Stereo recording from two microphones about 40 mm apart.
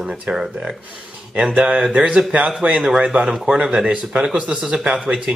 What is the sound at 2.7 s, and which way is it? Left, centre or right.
Speech, centre.